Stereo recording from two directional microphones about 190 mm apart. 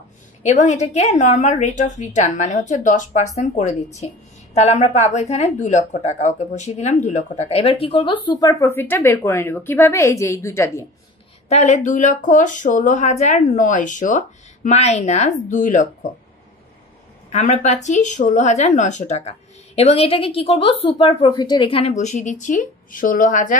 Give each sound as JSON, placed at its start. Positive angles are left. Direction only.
{"t": 0.4, "sound": "speech", "side_deg": 40}
{"t": 11.4, "sound": "speech", "side_deg": 35}
{"t": 17.3, "sound": "speech", "side_deg": 35}